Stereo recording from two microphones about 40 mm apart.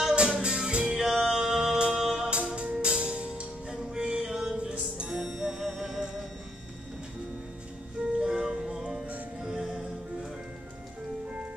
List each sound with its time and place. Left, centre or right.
0.1 s music: right
0.8 s music: centre
2.2 s music: right
5.1 s music: centre
8.2 s music: right